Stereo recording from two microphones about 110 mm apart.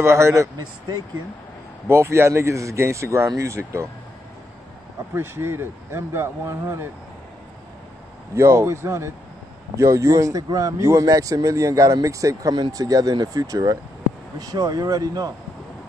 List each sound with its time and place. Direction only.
0.0 s speech: 25° right (ahead or behind)
5.1 s speech: 20° right (ahead or behind)
8.4 s speech: 25° right (ahead or behind)